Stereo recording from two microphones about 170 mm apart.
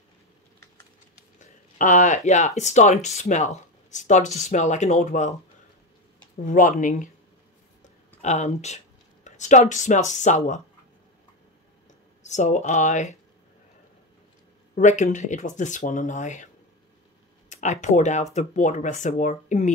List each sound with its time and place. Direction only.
1.4 s speech: 50° left (ahead or behind)
6.4 s speech: 50° left (ahead or behind)
8.2 s speech: 40° left (ahead or behind)
12.2 s speech: 45° left (ahead or behind)
14.8 s speech: 45° left (ahead or behind)
17.5 s speech: 45° left (ahead or behind)